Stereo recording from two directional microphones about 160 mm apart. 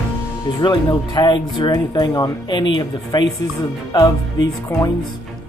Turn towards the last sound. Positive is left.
turn(degrees=20)  # may be behind; listen again after turning